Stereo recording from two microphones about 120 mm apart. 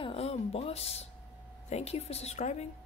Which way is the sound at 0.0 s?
55° left (ahead or behind).